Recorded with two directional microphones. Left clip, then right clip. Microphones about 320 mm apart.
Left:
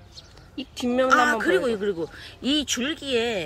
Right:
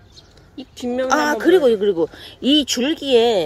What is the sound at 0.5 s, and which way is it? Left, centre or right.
Speech, centre.